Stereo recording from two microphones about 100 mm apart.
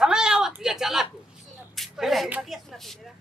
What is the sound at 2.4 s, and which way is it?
Speech, centre (ahead or behind).